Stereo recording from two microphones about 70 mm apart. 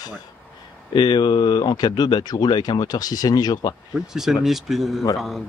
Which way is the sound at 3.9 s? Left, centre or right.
Centre.